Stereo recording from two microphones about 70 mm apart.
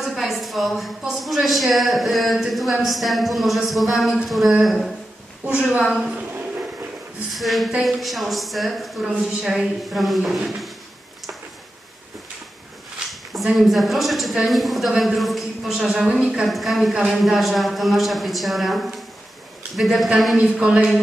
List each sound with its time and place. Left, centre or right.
0.0 s speech: centre
5.5 s a woman's voice: centre
5.9 s speech: centre
6.1 s a sound: right
7.3 s speech: centre
13.3 s speech: centre